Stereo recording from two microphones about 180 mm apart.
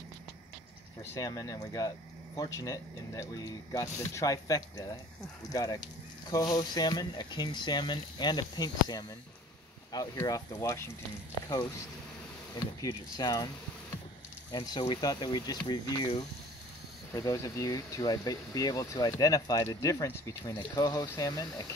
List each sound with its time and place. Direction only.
1.1 s speech: 20° left (ahead or behind)
14.5 s speech: 25° left (ahead or behind)